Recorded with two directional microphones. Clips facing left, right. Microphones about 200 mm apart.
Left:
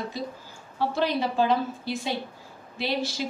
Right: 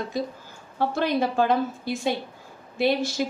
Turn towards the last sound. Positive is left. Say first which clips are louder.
# right 6 dB
turn(degrees=-50)  # may be behind; listen again after turning